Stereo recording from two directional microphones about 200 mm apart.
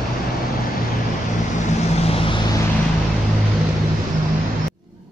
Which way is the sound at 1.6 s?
30° left (ahead or behind).